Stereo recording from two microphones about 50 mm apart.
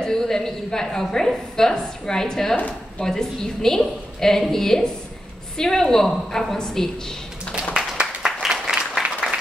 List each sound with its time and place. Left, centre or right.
0.0 s a woman's voice: centre
7.7 s applause: centre